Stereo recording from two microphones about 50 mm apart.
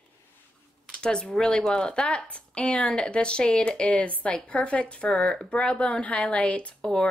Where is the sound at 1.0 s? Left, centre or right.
Centre.